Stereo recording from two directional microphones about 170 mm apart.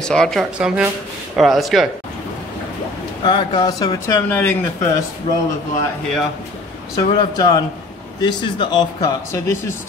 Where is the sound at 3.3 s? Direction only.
25° left (ahead or behind).